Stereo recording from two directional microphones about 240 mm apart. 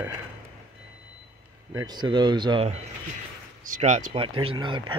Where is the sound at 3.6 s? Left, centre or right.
Right.